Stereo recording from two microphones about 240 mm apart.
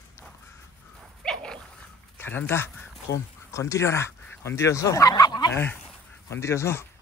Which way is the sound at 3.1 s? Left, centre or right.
Left.